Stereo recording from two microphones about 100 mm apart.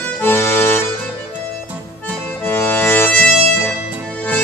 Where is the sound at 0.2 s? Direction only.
20° left (ahead or behind).